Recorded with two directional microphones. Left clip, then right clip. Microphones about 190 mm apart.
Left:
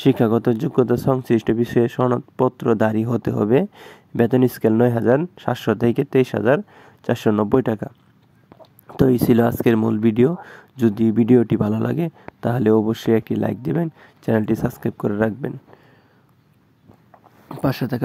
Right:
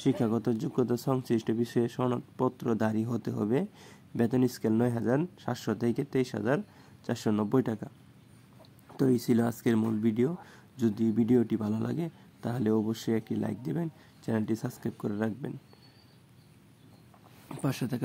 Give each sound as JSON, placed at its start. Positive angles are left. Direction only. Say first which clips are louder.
{"t": 0.0, "sound": "speech", "louder": "left 12 dB", "side_deg": 45}
{"t": 8.9, "sound": "speech", "louder": "left 11 dB", "side_deg": 45}
{"t": 17.5, "sound": "speech", "louder": "left 11 dB", "side_deg": 35}